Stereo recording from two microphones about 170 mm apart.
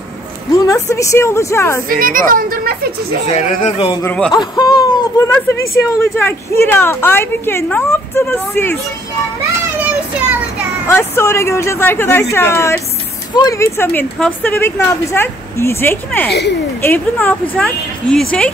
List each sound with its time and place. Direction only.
0.7 s a woman's voice: 20° left (ahead or behind)
1.9 s speech: 55° right (ahead or behind)
3.3 s speech: 45° left (ahead or behind)
4.0 s a woman's voice: 10° left (ahead or behind)
4.3 s a woman's voice: 25° left (ahead or behind)
10.9 s a woman's voice: 15° left (ahead or behind)
16.3 s speech: 75° left (ahead or behind)
16.8 s a woman's voice: 10° left (ahead or behind)